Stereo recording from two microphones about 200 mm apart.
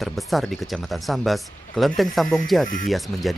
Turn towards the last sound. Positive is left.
turn(degrees=0)  # may be behind; listen again after turning